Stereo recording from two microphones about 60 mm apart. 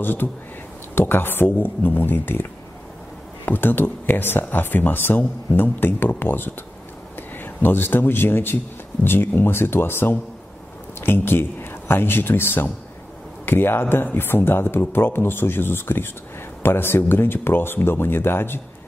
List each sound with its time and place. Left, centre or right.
0.0 s speech: left
3.4 s speech: left